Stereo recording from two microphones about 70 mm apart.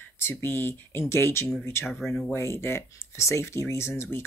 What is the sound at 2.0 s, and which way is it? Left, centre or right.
Speech, centre.